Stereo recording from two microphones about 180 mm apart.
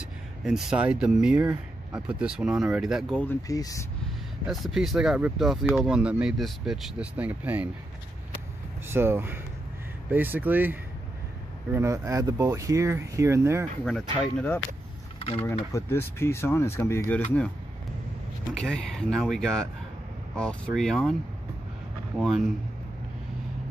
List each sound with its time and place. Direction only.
0.4 s speech: centre (ahead or behind)
3.2 s speech: 15° left (ahead or behind)
4.5 s speech: centre (ahead or behind)
8.8 s speech: 15° right (ahead or behind)
13.8 s speech: 5° left (ahead or behind)
15.1 s a sound: 30° left (ahead or behind)
15.4 s speech: 15° left (ahead or behind)
18.5 s speech: 5° left (ahead or behind)
22.2 s speech: centre (ahead or behind)